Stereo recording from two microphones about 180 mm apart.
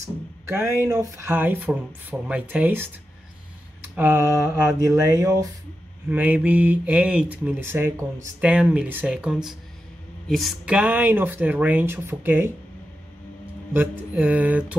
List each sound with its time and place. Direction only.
0.8 s speech: 20° right (ahead or behind)
3.9 s speech: 10° right (ahead or behind)
6.0 s speech: 10° right (ahead or behind)
13.7 s speech: 10° right (ahead or behind)